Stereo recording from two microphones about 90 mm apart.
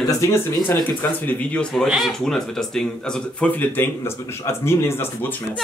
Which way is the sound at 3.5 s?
20° left (ahead or behind).